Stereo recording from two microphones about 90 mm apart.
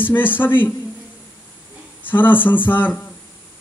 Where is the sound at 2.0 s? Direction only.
20° left (ahead or behind).